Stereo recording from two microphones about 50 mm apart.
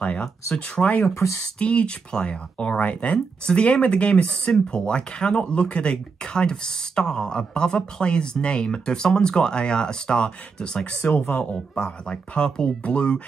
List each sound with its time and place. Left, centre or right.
0.6 s speech: left
1.1 s speech: left
1.6 s speech: left
11.1 s speech: left
11.7 s speech: centre